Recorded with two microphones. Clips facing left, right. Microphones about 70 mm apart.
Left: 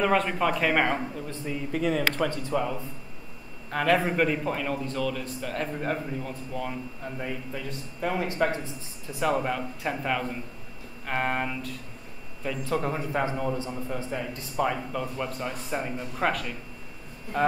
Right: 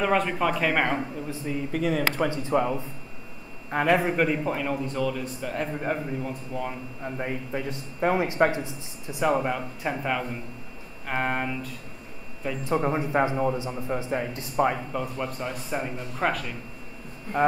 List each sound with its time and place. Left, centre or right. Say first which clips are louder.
0.0 s a man's voice: even; centre
2.0 s a man's voice: right 2 dB; centre
7.2 s a man's voice: right 4 dB; right; by 11.7 s centre
12.4 s speech: right 3 dB; centre
14.9 s a man's voice: right 1 dB; centre